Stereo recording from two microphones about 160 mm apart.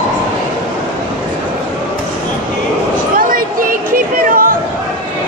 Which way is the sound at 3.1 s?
60° right (ahead or behind).